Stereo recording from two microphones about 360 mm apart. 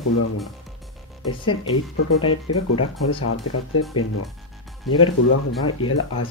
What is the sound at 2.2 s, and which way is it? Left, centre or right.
Speech, left.